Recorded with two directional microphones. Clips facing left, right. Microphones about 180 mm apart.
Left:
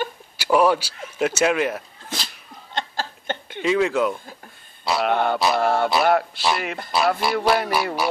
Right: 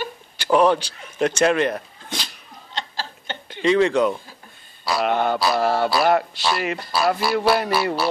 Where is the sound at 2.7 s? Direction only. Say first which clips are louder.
Left 3 dB; 50° left (ahead or behind).